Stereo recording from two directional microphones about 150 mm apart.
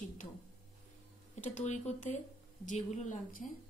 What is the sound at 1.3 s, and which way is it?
A woman's voice, 50° left (ahead or behind).